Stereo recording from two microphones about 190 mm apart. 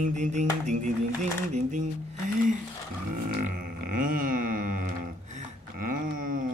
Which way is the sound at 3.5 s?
45° right (ahead or behind).